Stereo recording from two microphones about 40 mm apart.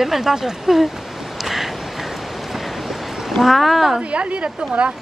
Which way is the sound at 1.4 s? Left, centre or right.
Centre.